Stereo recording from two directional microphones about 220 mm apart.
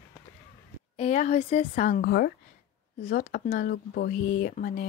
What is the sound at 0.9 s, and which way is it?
Speech, 35° left (ahead or behind).